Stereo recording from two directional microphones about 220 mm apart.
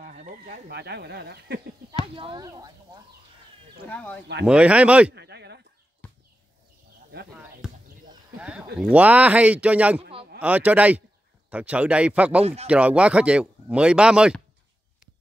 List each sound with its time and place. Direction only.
0.0 s speech: 40° right (ahead or behind)
2.1 s speech: 20° right (ahead or behind)
3.8 s speech: 5° left (ahead or behind)
4.5 s speech: 5° right (ahead or behind)
5.1 s speech: 50° right (ahead or behind)
8.4 s speech: 5° right (ahead or behind)